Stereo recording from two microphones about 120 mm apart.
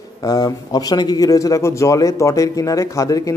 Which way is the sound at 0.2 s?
30° left (ahead or behind).